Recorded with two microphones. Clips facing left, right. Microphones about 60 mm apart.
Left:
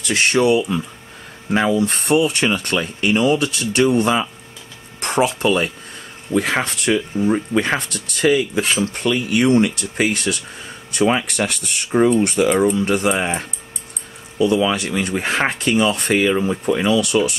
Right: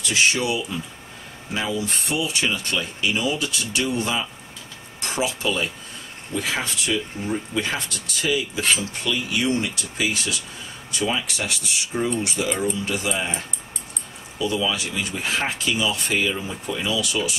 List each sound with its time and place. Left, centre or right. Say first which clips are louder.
0.0 s speech: left 5 dB; left